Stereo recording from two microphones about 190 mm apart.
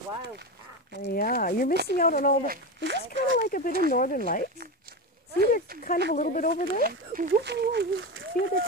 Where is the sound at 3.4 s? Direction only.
50° left (ahead or behind).